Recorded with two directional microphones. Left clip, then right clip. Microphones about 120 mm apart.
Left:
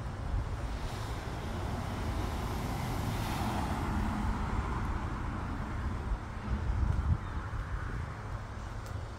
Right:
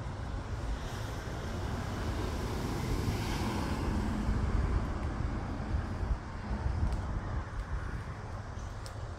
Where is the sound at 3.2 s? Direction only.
20° left (ahead or behind).